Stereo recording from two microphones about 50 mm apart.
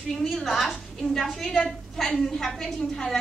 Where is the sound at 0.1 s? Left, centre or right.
Centre.